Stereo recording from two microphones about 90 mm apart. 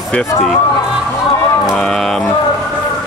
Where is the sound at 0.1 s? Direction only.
5° left (ahead or behind).